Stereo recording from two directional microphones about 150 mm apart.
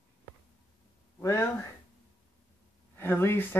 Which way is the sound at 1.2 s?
20° left (ahead or behind).